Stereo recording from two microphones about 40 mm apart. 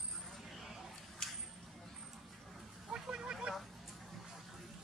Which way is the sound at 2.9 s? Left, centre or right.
Right.